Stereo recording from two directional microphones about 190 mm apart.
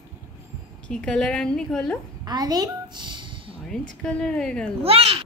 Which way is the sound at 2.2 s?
20° right (ahead or behind).